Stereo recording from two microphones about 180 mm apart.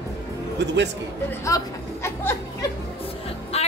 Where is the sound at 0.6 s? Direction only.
75° right (ahead or behind).